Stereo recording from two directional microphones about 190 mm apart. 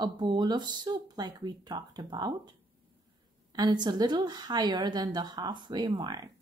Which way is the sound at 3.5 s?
20° right (ahead or behind).